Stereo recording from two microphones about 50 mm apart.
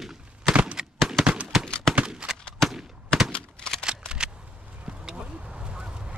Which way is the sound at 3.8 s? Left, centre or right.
Centre.